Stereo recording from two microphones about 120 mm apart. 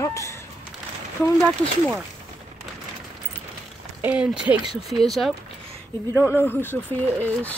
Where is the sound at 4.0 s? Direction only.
15° right (ahead or behind).